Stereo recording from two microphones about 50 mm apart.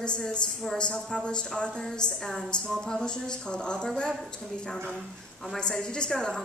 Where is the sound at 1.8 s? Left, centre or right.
Centre.